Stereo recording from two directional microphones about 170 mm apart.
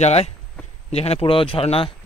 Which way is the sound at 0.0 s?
40° left (ahead or behind).